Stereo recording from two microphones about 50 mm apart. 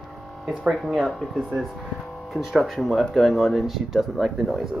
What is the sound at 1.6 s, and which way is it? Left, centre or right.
Vehicle, centre.